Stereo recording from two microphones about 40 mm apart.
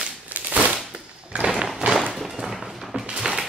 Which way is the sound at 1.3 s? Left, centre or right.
Right.